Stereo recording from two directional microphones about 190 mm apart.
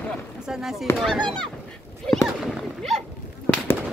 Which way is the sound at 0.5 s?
Centre (ahead or behind).